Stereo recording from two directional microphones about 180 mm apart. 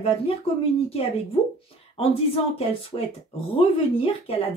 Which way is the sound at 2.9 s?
30° left (ahead or behind).